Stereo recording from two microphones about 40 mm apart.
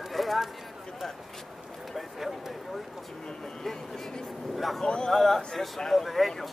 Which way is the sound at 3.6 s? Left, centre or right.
Centre.